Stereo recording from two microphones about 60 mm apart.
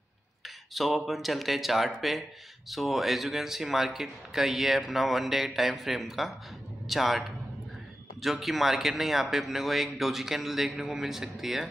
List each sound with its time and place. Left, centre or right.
0.7 s speech: centre